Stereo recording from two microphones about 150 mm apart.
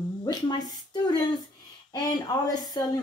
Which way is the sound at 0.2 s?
30° left (ahead or behind).